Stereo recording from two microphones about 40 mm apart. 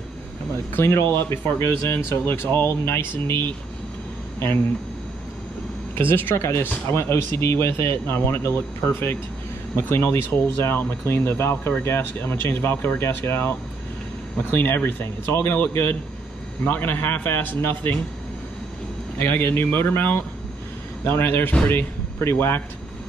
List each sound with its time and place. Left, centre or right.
0.7 s speech: left
5.9 s speech: left
7.0 s speech: left
9.8 s speech: left
10.6 s speech: left
12.2 s speech: left
13.0 s speech: left
14.5 s a man's voice: left
19.1 s a man's voice: left